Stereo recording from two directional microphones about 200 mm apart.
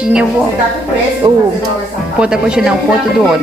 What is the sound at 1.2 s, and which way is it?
Speech, 20° right (ahead or behind).